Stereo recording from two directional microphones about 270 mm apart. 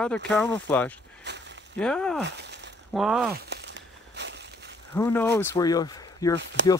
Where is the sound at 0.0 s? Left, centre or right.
Centre.